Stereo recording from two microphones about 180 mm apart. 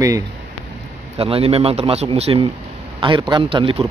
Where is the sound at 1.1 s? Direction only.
30° right (ahead or behind).